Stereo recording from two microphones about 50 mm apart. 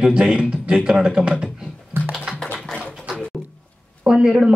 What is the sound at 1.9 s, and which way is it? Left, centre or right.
Computer keyboard, right.